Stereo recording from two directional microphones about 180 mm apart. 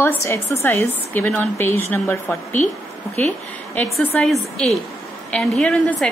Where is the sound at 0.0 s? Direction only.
15° left (ahead or behind).